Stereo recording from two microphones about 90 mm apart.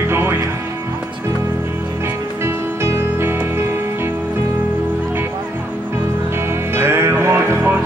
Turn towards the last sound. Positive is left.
turn(degrees=-25)  # may be behind; listen again after turning